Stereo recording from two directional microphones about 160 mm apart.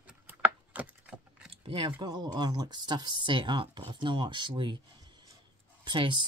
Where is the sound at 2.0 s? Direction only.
25° right (ahead or behind).